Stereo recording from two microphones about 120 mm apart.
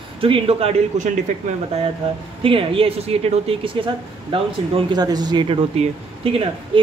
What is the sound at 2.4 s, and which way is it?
Speech, 50° right (ahead or behind).